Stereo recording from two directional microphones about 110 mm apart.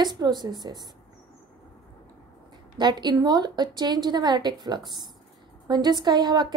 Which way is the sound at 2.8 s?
40° right (ahead or behind).